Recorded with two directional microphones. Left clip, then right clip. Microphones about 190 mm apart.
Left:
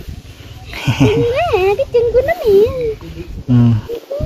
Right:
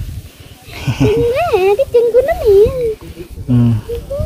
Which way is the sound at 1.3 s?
30° right (ahead or behind).